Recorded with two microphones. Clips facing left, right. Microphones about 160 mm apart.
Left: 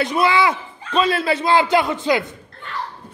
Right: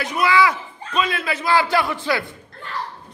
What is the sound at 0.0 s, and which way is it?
A man's voice, 30° left (ahead or behind).